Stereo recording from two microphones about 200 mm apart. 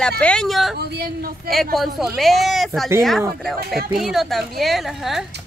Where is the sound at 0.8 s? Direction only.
55° right (ahead or behind).